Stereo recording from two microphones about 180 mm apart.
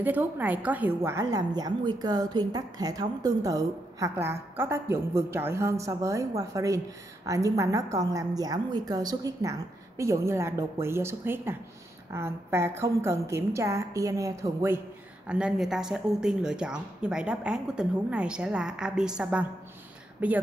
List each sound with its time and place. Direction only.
0.0 s a woman's voice: 10° right (ahead or behind)